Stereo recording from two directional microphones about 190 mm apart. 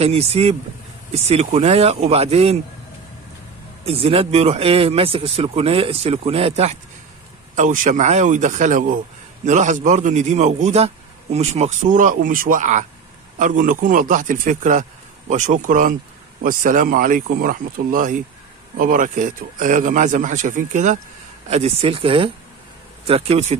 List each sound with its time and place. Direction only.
0.0 s speech: 30° right (ahead or behind)
3.8 s a man's voice: 30° right (ahead or behind)